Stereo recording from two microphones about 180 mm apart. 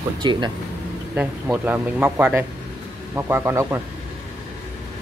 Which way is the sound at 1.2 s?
10° right (ahead or behind).